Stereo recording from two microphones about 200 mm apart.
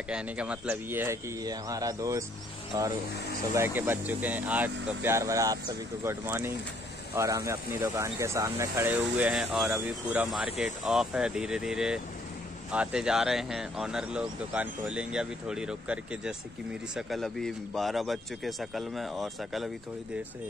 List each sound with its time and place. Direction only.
0.1 s speech: 5° right (ahead or behind)